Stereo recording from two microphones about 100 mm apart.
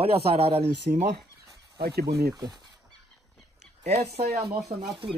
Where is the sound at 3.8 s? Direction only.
90° right.